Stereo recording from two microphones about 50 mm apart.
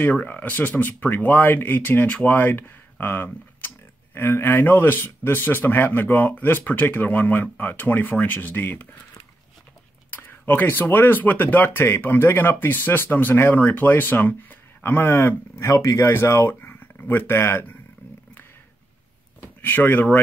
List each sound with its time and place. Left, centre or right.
0.0 s speech: left
10.1 s speech: left
15.6 s speech: left
16.1 s speech: left
17.1 s speech: left
19.4 s speech: left